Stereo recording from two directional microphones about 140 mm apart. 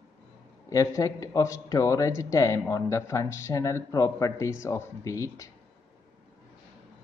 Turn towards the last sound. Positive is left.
turn(degrees=25)  # may be behind; listen again after turning